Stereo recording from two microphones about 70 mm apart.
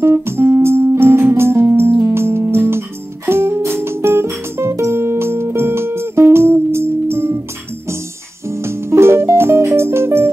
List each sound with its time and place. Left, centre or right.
0.0 s music: right
8.5 s music: right